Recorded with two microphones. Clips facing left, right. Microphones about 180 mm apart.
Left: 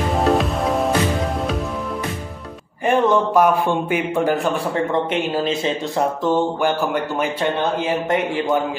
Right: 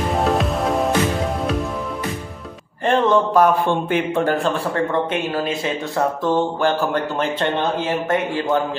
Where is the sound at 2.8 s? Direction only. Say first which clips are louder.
Even; 10° left (ahead or behind).